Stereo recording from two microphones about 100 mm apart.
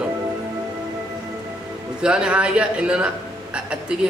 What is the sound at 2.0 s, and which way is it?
Speech, 10° right (ahead or behind).